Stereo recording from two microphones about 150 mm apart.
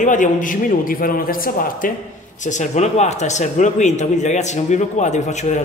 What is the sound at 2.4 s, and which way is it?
A man's voice, 55° left (ahead or behind).